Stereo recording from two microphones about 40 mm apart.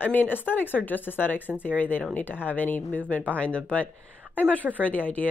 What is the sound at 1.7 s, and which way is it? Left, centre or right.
Speech, left.